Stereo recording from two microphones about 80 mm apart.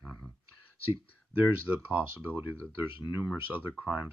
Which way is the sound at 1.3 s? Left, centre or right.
Right.